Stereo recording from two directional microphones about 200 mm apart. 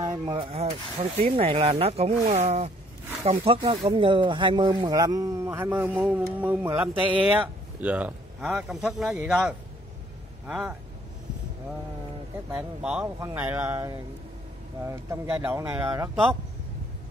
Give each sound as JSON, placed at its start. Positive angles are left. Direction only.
{"t": 0.0, "sound": "speech", "side_deg": -20}
{"t": 12.4, "sound": "speech", "side_deg": -5}